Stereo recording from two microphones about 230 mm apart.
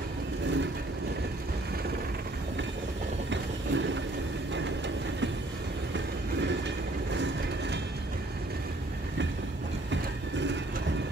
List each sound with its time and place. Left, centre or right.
3.3 s vehicle: right